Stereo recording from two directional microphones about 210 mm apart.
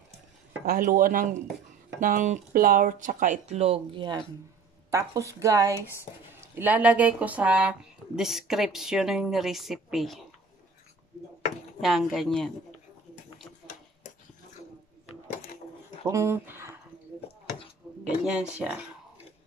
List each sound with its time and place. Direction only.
0.7 s speech: 40° right (ahead or behind); by 10.2 s centre (ahead or behind)
11.8 s speech: centre (ahead or behind)
15.2 s a sound: 40° left (ahead or behind)
16.1 s speech: 15° right (ahead or behind)
18.0 s speech: 5° right (ahead or behind)
18.6 s a sound: 5° right (ahead or behind)